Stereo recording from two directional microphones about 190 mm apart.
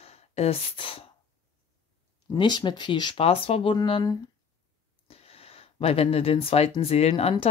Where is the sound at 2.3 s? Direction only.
25° left (ahead or behind).